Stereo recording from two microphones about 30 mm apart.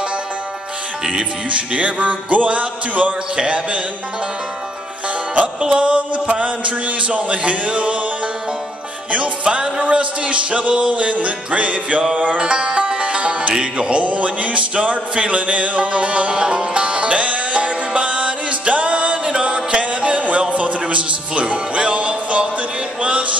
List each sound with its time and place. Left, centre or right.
1.5 s music: right
5.7 s music: right
9.1 s music: right
12.4 s music: right
19.2 s music: right
20.2 s a sound: right
20.8 s music: right